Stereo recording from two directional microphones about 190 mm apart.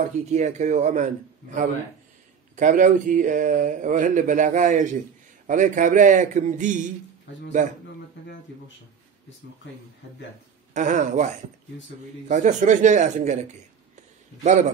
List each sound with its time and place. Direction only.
0.3 s speech: 35° right (ahead or behind)
10.7 s speech: 40° right (ahead or behind)
12.3 s speech: 40° right (ahead or behind)
14.4 s speech: 40° right (ahead or behind)